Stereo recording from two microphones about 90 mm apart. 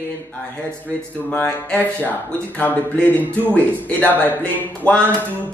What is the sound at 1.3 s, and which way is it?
A man's voice, 15° left (ahead or behind).